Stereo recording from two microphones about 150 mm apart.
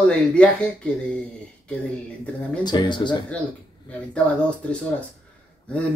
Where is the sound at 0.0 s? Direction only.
5° left (ahead or behind).